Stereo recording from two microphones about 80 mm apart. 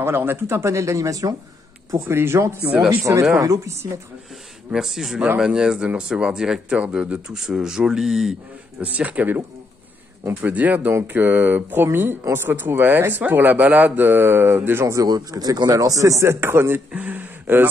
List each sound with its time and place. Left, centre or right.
0.0 s speech: right
2.0 s speech: right
3.3 s speech: right
4.7 s speech: centre
8.8 s speech: centre
10.4 s speech: centre
15.0 s speech: right